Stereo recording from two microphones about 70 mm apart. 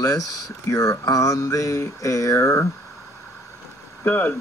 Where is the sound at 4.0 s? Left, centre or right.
Left.